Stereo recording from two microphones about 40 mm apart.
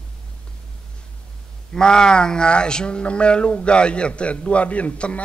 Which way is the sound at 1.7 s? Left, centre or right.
Centre.